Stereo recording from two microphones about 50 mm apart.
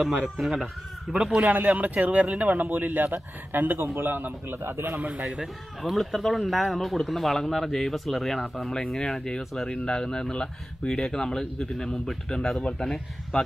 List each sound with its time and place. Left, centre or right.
0.0 s speech: centre
1.4 s a man's voice: right
5.2 s speech: centre
5.8 s speech: centre